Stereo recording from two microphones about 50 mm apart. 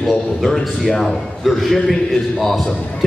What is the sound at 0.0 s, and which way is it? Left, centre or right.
A man's voice, centre.